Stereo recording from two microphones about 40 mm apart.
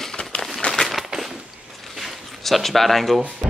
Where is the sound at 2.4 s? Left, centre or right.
Centre.